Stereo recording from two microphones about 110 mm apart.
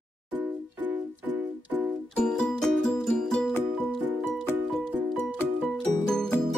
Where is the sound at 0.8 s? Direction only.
15° right (ahead or behind).